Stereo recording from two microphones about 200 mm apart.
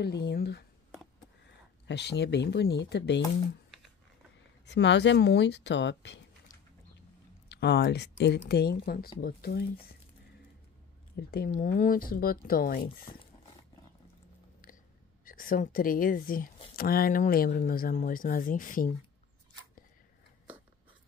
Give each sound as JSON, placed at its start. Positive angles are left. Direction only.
{"t": 0.0, "sound": "speech", "side_deg": 55}
{"t": 1.9, "sound": "speech", "side_deg": 60}
{"t": 4.6, "sound": "speech", "side_deg": 60}
{"t": 7.4, "sound": "speech", "side_deg": 55}
{"t": 11.1, "sound": "speech", "side_deg": 50}
{"t": 15.2, "sound": "speech", "side_deg": 45}